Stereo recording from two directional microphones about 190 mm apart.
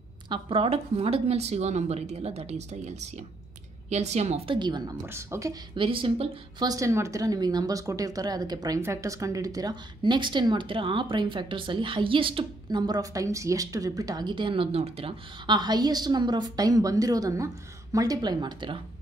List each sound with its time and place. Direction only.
0.3 s speech: 30° right (ahead or behind)
4.6 s a woman's voice: 25° right (ahead or behind)